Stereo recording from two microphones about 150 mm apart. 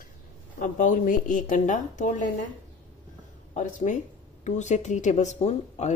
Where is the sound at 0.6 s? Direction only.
60° left (ahead or behind).